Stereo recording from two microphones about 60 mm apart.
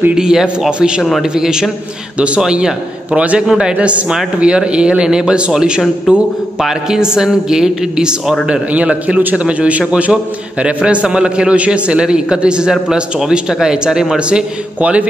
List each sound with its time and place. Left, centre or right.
0.1 s a man's voice: centre
14.8 s a man's voice: right